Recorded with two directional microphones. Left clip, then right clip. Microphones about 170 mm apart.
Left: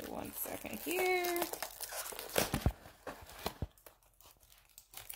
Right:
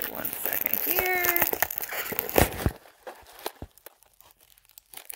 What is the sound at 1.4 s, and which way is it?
Crumpling, 35° right (ahead or behind).